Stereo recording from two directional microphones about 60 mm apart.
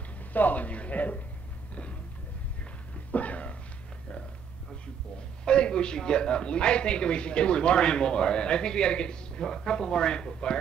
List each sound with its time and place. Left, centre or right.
0.3 s speech: left
3.1 s cough: left
5.4 s a man's voice: centre